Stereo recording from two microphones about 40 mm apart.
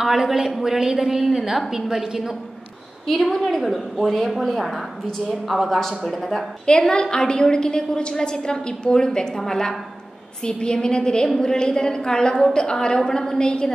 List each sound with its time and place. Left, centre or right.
0.0 s a woman's voice: centre
3.1 s a woman's voice: centre
6.6 s a woman's voice: centre